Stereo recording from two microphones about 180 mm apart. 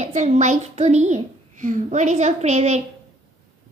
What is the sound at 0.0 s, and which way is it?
A woman's voice, 40° right (ahead or behind).